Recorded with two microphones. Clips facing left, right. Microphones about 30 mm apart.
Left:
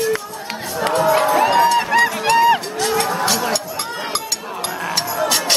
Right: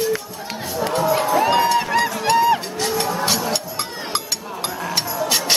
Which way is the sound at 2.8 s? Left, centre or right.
Centre.